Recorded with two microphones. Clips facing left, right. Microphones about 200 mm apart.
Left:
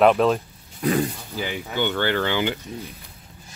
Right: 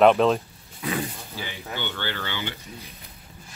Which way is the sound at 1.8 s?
50° left (ahead or behind).